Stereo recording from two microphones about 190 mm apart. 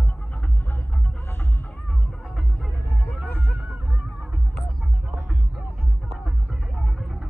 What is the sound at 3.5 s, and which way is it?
Music, 5° right (ahead or behind).